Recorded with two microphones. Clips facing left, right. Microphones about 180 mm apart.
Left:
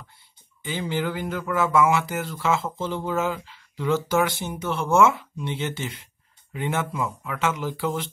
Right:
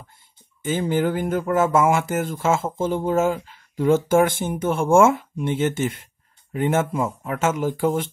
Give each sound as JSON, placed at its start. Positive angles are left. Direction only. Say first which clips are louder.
{"t": 0.6, "sound": "speech", "louder": "right 6 dB", "side_deg": -45}